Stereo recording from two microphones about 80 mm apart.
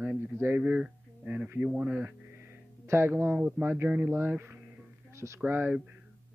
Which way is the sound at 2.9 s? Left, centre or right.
Right.